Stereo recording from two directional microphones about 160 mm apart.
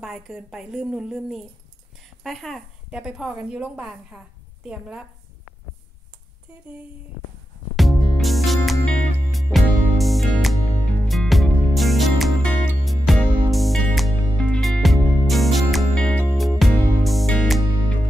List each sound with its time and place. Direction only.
0.0 s a woman's voice: 5° right (ahead or behind)
7.7 s music: centre (ahead or behind)